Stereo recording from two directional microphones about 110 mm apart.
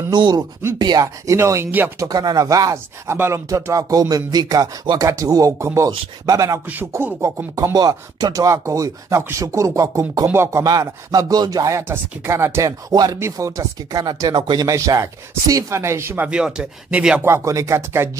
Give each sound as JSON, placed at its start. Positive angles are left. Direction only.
{"t": 0.1, "sound": "speech", "side_deg": -40}
{"t": 2.0, "sound": "speech", "side_deg": -35}
{"t": 6.7, "sound": "speech", "side_deg": -20}
{"t": 7.7, "sound": "speech", "side_deg": -35}
{"t": 10.6, "sound": "speech", "side_deg": -35}
{"t": 12.9, "sound": "speech", "side_deg": -35}
{"t": 16.3, "sound": "speech", "side_deg": -5}
{"t": 17.2, "sound": "speech", "side_deg": -25}